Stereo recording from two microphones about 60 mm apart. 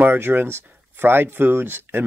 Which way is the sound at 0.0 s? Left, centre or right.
Right.